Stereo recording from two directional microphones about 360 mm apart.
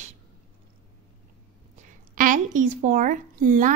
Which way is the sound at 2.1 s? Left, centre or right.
Right.